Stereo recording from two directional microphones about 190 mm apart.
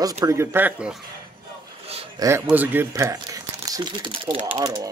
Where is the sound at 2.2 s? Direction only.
10° right (ahead or behind).